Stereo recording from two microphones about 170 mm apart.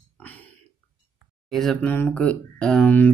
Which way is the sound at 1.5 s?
Centre (ahead or behind).